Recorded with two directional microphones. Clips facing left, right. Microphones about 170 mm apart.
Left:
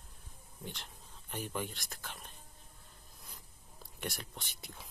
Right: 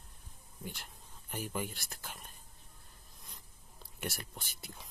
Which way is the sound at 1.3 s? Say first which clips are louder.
Right 1 dB; 5° right (ahead or behind).